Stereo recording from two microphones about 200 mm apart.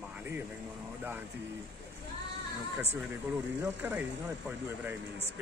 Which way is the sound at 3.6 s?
10° right (ahead or behind).